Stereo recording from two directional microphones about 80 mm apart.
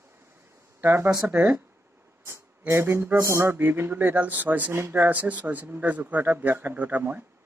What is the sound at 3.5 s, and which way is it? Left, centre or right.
A man's voice, right.